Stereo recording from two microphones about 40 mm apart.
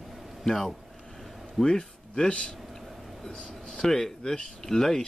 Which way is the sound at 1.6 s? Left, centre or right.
Centre.